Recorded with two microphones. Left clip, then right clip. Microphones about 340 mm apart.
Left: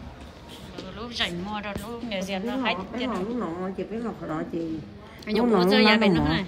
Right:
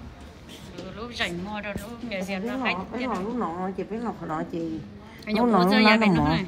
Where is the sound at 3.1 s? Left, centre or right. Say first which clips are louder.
Right 1 dB; centre.